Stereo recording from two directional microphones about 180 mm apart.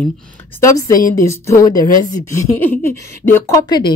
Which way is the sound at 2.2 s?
15° left (ahead or behind).